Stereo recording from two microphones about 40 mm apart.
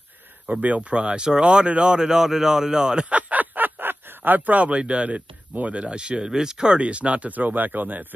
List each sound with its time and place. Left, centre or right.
0.5 s speech: right
0.7 s speech: right
3.1 s a sound: right
5.5 s speech: right